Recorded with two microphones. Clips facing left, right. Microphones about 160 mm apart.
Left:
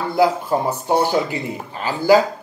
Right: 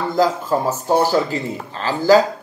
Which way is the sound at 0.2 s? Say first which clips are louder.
Left 1 dB; 15° left (ahead or behind).